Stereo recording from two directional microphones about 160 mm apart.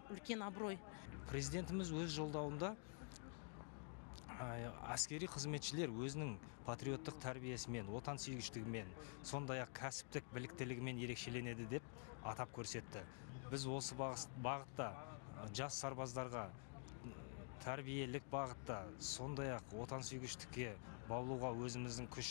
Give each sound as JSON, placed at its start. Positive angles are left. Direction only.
{"t": 0.3, "sound": "speech", "side_deg": -25}
{"t": 4.3, "sound": "speech", "side_deg": -25}
{"t": 17.6, "sound": "speech", "side_deg": -25}